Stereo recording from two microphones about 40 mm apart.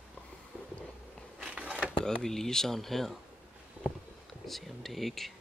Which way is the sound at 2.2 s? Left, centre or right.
Centre.